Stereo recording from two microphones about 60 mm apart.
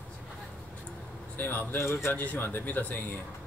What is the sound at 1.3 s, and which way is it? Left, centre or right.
Speech, left.